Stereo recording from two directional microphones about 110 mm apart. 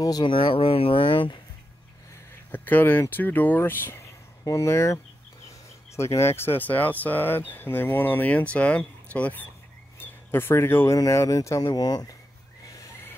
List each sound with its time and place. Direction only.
0.0 s speech: 40° left (ahead or behind)
2.5 s speech: 15° left (ahead or behind); by 12.2 s 35° left (ahead or behind)
12.6 s a sound: 30° left (ahead or behind)